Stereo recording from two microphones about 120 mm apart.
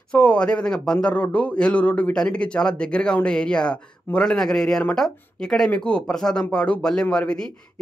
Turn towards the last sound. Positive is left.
turn(degrees=5)  # may be behind; listen again after turning